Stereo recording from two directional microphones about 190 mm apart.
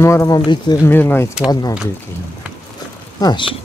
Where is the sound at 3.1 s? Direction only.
25° left (ahead or behind).